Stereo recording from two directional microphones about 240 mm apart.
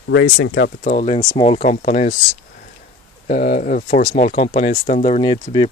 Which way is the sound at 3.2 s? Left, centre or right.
Left.